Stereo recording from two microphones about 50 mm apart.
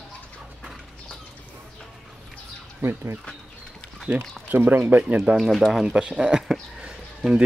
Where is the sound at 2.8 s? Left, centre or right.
Right.